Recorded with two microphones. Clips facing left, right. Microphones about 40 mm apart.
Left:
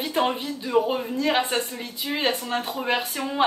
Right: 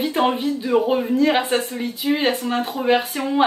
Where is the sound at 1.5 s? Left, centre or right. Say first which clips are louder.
Right 5 dB; right.